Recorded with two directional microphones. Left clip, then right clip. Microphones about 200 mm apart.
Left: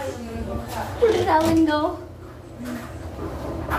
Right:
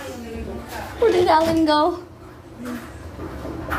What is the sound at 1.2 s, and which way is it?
Speech, 55° right (ahead or behind).